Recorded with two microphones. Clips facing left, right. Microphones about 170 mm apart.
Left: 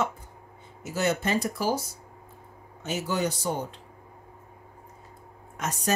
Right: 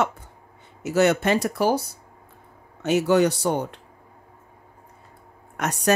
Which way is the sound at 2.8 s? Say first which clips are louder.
Right 10 dB; 70° right (ahead or behind).